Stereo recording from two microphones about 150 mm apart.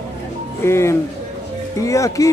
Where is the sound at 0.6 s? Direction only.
15° left (ahead or behind).